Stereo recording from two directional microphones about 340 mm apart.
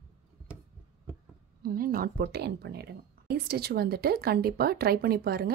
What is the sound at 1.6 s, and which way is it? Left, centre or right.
Speech, right.